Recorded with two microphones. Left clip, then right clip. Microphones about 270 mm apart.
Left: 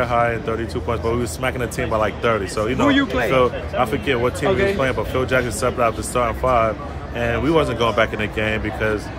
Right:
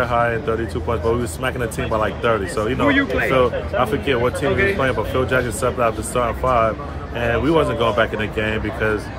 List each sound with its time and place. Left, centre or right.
0.0 s speech: centre